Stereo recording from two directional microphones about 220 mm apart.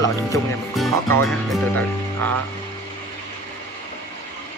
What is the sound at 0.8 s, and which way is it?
Speech, centre (ahead or behind).